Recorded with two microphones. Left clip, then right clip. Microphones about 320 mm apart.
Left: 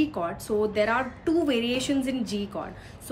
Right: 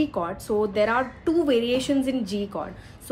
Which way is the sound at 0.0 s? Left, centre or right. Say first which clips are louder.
Right 1 dB; centre.